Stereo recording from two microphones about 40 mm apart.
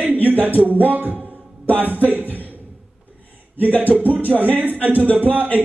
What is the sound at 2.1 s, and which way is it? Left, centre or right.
Speech, right.